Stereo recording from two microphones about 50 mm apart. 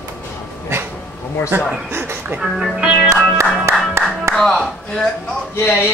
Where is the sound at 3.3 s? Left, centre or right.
Right.